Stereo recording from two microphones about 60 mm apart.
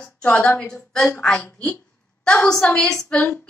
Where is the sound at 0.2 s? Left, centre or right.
Left.